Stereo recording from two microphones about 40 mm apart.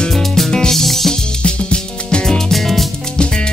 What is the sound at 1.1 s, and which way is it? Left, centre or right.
Music, left.